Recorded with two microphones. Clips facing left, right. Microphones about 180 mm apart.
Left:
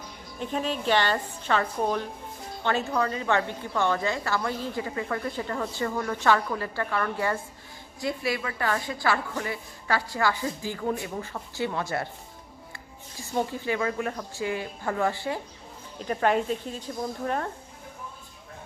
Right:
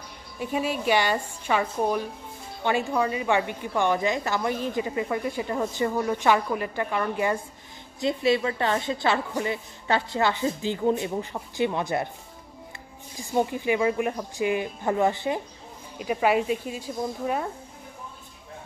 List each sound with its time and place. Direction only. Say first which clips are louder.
0.4 s a woman's voice: right 2 dB; 10° right (ahead or behind)
13.2 s a woman's voice: right 4 dB; 15° right (ahead or behind)
16.0 s a woman's voice: right 2 dB; 10° right (ahead or behind)